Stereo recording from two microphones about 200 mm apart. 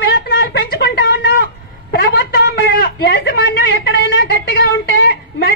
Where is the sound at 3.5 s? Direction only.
65° left (ahead or behind).